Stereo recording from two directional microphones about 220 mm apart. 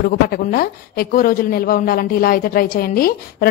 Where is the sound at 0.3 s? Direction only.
40° left (ahead or behind).